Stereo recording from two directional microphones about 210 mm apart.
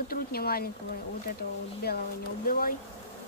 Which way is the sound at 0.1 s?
45° left (ahead or behind).